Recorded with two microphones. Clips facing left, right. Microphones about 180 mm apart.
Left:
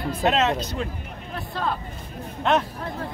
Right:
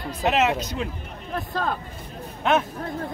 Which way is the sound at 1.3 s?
45° right (ahead or behind).